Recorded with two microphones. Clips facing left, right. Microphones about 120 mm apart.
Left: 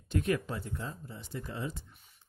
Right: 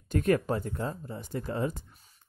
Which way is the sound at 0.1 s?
45° right (ahead or behind).